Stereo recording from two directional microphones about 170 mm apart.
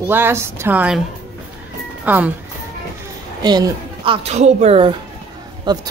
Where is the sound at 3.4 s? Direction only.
25° right (ahead or behind).